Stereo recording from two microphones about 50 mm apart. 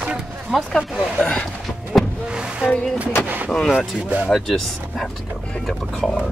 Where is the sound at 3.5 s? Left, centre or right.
Centre.